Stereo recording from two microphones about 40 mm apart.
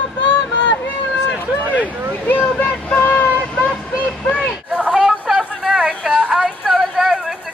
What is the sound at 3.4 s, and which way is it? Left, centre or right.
Vehicle, left.